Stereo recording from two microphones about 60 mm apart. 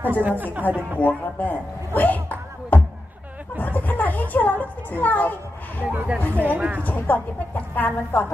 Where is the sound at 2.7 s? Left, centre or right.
Left.